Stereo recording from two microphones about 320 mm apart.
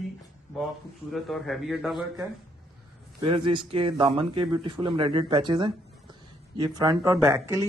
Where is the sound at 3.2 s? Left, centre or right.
Centre.